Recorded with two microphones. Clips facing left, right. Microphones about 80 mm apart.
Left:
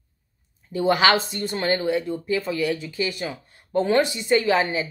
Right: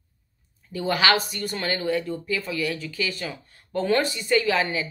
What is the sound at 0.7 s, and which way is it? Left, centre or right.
Speech, left.